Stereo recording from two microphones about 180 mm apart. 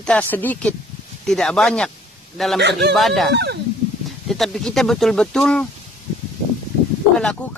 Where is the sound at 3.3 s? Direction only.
70° right (ahead or behind).